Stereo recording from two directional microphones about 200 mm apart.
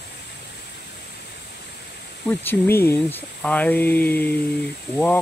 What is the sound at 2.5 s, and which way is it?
Speech, 10° left (ahead or behind).